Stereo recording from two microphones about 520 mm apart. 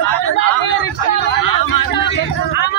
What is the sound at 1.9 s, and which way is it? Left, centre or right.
Speech, centre.